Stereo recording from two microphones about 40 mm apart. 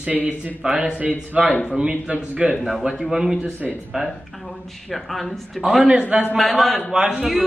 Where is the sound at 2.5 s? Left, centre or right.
Centre.